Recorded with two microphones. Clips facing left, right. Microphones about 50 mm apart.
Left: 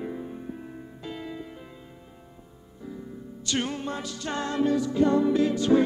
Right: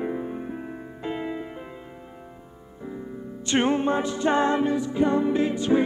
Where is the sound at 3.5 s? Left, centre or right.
Right.